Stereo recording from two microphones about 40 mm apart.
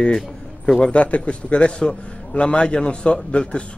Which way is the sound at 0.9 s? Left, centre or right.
Left.